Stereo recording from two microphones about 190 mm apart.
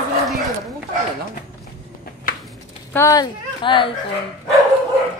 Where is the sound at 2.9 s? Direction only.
20° left (ahead or behind).